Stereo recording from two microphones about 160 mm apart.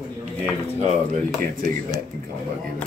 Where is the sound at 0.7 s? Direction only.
50° right (ahead or behind).